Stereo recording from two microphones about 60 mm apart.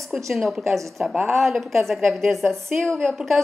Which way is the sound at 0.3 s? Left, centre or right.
Centre.